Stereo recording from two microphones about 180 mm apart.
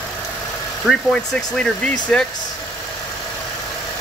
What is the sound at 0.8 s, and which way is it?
Speech, centre (ahead or behind).